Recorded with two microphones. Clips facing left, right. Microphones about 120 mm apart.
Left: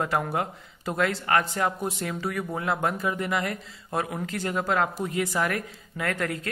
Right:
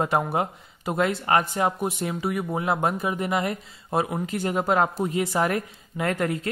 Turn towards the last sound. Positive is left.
turn(degrees=-25)  # may be behind; listen again after turning